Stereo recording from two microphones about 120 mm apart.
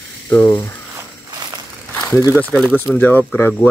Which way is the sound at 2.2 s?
15° right (ahead or behind).